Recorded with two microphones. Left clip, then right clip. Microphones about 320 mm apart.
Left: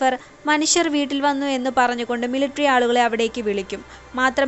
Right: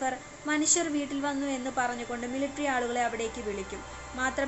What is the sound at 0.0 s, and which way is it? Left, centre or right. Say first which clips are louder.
A woman's voice: left 12 dB; left.